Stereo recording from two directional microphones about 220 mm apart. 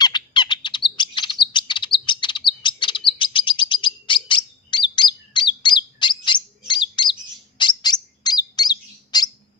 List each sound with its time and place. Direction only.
0.0 s bird: 20° left (ahead or behind)
1.5 s chirp: 20° left (ahead or behind)